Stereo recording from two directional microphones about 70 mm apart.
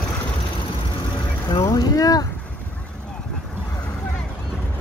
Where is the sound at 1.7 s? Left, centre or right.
Left.